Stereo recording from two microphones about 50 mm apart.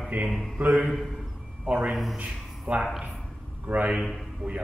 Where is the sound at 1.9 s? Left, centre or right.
Centre.